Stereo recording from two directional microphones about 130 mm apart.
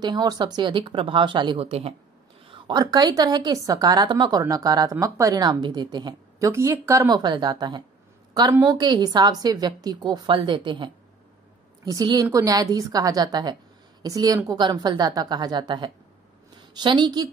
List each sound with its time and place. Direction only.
0.0 s a woman's voice: 30° right (ahead or behind)
6.5 s a woman's voice: 20° right (ahead or behind)